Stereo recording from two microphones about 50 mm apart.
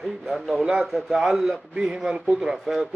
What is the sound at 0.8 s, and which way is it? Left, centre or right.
Speech, centre.